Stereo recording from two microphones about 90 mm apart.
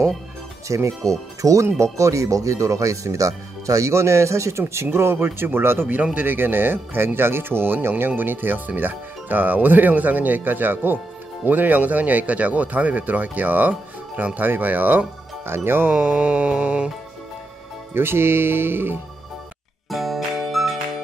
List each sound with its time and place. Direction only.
0.7 s speech: 35° right (ahead or behind)
15.9 s speech: 10° right (ahead or behind)
17.9 s speech: 25° right (ahead or behind)
19.9 s music: centre (ahead or behind)